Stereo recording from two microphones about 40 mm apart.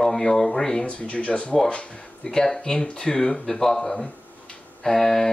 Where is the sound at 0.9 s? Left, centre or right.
Left.